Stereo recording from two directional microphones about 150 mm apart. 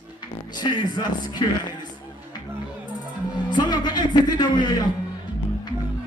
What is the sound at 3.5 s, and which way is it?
Speech, 30° left (ahead or behind).